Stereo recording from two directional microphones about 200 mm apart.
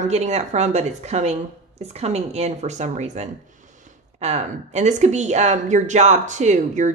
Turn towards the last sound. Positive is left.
turn(degrees=-35)  # may be behind; listen again after turning